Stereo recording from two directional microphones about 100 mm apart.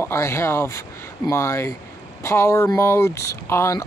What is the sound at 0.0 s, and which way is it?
Speech, 30° left (ahead or behind).